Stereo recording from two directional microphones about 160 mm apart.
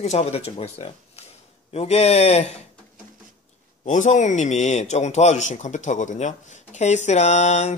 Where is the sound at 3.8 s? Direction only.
50° left (ahead or behind).